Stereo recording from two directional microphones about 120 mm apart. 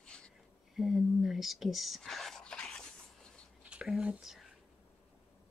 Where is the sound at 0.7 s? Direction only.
Centre (ahead or behind).